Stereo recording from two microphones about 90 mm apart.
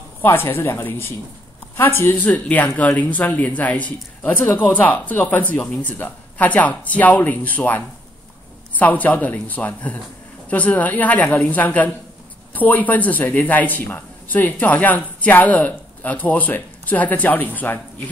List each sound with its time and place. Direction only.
0.2 s speech: 25° left (ahead or behind)